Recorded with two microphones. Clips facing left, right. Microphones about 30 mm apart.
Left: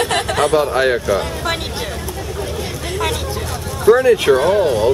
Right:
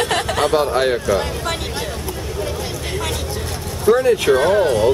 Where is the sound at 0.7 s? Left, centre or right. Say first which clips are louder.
Left 2 dB; left.